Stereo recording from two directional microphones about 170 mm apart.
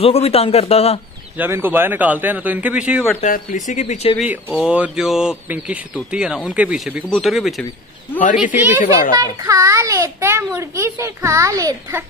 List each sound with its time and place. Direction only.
0.0 s a man's voice: 35° left (ahead or behind)
1.4 s a child's voice: 10° right (ahead or behind)
3.2 s speech: 45° left (ahead or behind)
4.6 s speech: 5° right (ahead or behind)
8.5 s a child's voice: 10° right (ahead or behind)